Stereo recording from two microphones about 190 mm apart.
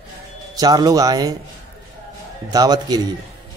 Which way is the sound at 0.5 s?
20° right (ahead or behind).